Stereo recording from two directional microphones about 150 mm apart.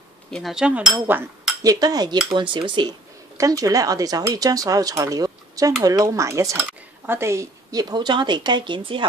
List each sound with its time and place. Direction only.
0.3 s speech: centre (ahead or behind)
1.6 s speech: 25° right (ahead or behind)